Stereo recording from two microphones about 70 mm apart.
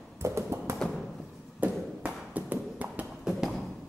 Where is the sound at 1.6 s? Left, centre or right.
Right.